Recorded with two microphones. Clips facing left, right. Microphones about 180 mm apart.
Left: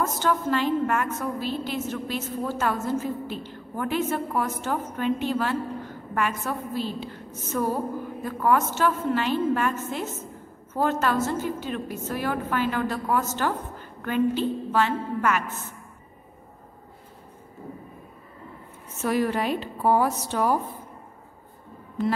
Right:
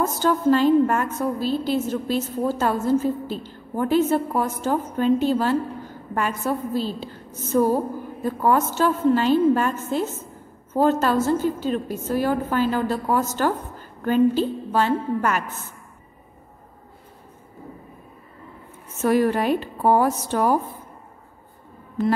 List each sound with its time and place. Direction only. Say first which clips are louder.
0.0 s a woman's voice: right 5 dB; 35° right (ahead or behind)
18.9 s speech: right 5 dB; 45° right (ahead or behind)